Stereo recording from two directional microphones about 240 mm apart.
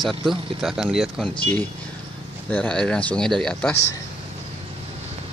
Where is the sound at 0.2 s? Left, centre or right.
Centre.